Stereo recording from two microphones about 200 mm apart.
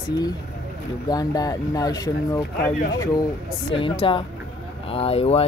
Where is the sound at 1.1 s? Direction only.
20° left (ahead or behind).